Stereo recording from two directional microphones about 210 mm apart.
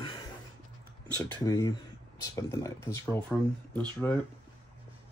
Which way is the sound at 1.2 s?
10° left (ahead or behind).